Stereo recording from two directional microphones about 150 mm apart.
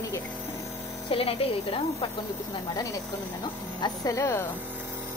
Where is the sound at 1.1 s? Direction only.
40° left (ahead or behind).